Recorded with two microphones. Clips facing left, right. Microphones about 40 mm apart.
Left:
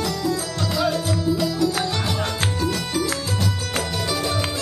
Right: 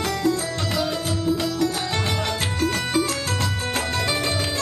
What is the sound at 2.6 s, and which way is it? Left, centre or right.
Music, right.